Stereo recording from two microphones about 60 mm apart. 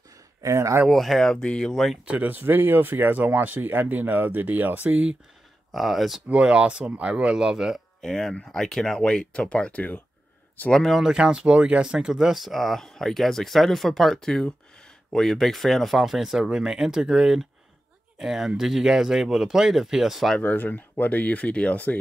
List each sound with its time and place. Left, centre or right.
0.4 s speech: right
0.8 s speech: centre
1.7 s speech: centre
2.2 s speech: right
5.7 s speech: centre
6.2 s speech: centre
8.0 s speech: centre; by 10.0 s left
10.7 s speech: centre
11.0 s speech: centre
20.3 s speech: left